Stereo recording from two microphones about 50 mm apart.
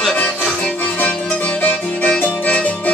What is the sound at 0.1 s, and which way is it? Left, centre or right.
Music, left.